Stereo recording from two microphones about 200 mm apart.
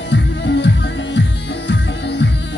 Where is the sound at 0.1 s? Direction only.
60° left (ahead or behind).